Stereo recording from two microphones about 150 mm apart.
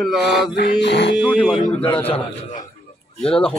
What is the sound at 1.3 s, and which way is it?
Speech, 30° left (ahead or behind).